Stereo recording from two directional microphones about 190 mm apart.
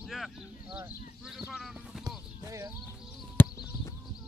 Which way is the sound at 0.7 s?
5° right (ahead or behind).